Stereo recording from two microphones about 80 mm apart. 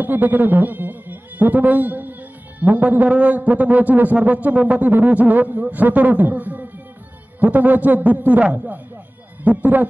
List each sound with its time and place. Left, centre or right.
0.0 s a man's voice: right